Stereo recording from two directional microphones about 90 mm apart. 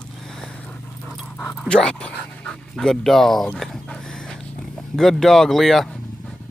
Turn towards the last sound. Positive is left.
turn(degrees=0)  # may be behind; listen again after turning